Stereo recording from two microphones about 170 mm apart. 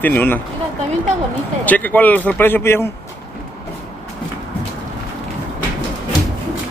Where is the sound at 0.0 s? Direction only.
10° left (ahead or behind).